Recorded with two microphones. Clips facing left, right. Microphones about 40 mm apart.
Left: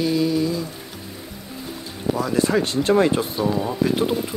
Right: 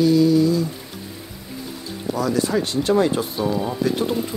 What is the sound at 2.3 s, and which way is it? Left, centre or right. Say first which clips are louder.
Speech: left 3 dB; left.